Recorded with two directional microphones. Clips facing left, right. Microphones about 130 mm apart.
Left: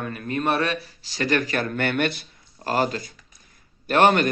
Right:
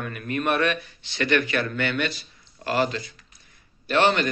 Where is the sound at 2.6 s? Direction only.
40° left (ahead or behind).